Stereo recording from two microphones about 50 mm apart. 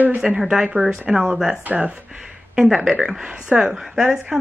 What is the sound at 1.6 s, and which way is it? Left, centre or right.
Speech, right.